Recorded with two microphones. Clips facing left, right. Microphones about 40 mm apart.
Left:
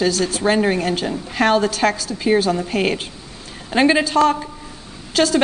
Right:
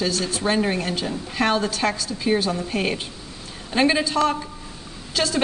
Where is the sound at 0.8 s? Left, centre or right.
Left.